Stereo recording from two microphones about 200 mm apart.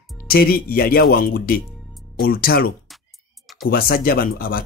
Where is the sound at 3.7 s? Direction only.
45° left (ahead or behind).